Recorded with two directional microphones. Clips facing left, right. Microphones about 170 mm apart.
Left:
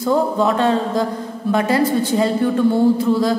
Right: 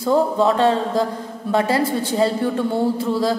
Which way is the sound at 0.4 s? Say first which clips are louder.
Even; 30° right (ahead or behind).